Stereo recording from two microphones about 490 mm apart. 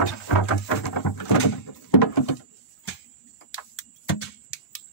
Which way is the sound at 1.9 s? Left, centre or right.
Left.